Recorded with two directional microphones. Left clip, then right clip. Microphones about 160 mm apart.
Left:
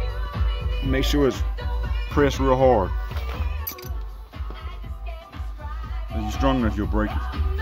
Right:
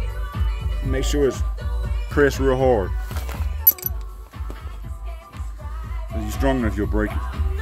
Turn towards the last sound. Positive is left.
turn(degrees=10)  # may be behind; listen again after turning